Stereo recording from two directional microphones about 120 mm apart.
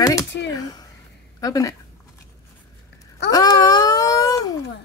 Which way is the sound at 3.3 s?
30° left (ahead or behind).